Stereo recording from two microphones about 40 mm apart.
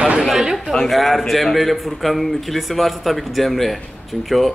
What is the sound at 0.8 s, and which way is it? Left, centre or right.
A man's voice, centre.